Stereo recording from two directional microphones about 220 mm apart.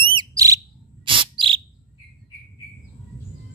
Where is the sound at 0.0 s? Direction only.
20° right (ahead or behind).